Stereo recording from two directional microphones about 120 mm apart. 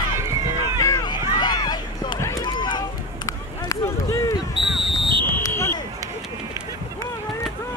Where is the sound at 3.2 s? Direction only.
25° left (ahead or behind).